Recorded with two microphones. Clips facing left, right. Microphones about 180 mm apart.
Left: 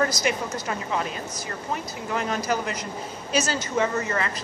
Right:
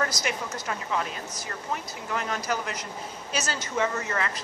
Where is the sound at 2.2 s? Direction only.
5° left (ahead or behind).